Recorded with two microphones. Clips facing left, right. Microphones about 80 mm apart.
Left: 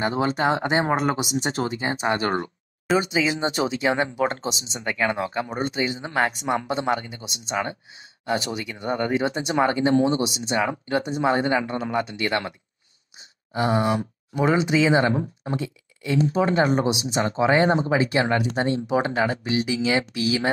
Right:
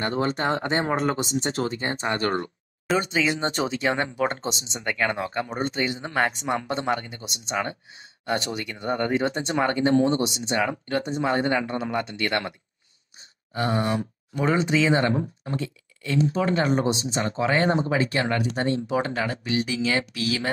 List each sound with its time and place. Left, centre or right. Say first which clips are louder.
0.0 s speech: left 3 dB; centre
2.9 s speech: left 2 dB; centre
13.2 s groan: left 3 dB; centre
14.3 s speech: left 2 dB; centre